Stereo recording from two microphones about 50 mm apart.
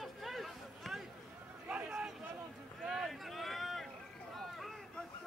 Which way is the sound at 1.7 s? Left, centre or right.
Right.